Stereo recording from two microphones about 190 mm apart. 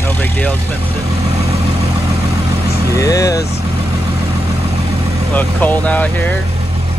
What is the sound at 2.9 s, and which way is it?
Speech, 20° left (ahead or behind).